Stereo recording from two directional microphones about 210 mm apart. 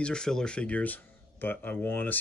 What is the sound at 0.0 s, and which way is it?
Speech, 5° left (ahead or behind).